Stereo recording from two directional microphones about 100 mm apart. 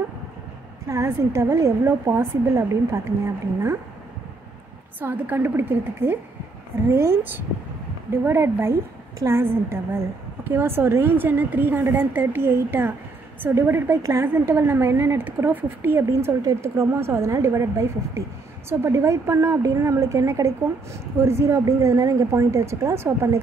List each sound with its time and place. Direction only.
0.8 s speech: 30° right (ahead or behind)
5.0 s a woman's voice: 20° right (ahead or behind)